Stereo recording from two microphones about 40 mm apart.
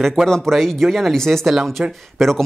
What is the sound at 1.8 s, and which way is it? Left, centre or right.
Speech, right.